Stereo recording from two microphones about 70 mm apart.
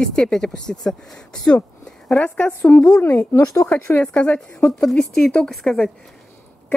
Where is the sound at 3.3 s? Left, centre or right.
Left.